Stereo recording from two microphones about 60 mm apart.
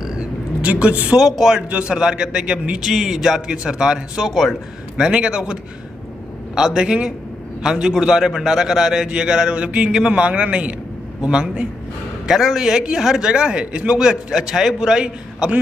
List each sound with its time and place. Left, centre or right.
0.2 s vehicle: centre
1.1 s speech: centre
1.7 s speech: centre
2.8 s speech: centre
4.3 s speech: centre
4.9 s speech: centre